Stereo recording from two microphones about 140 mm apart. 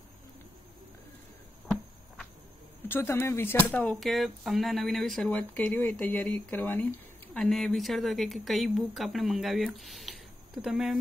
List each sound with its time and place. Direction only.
2.9 s speech: 15° left (ahead or behind)
5.5 s speech: 15° left (ahead or behind)
7.3 s speech: 5° left (ahead or behind)